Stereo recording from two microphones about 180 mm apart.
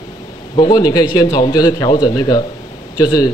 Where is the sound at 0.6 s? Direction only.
20° left (ahead or behind).